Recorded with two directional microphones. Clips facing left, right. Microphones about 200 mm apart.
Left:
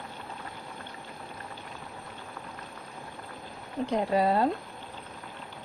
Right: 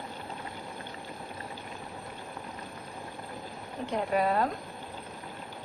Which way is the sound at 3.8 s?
35° left (ahead or behind).